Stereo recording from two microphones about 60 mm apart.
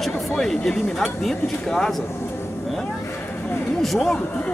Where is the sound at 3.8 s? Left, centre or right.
Centre.